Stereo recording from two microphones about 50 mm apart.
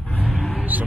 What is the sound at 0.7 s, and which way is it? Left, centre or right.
Speech, right.